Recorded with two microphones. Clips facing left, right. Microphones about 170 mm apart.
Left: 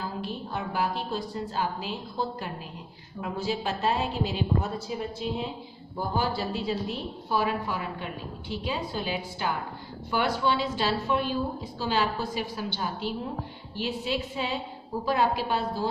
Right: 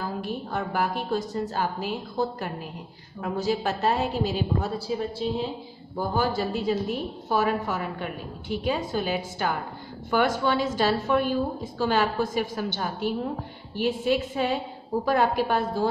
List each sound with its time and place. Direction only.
0.0 s a woman's voice: 50° right (ahead or behind)
5.9 s a woman's voice: 45° right (ahead or behind)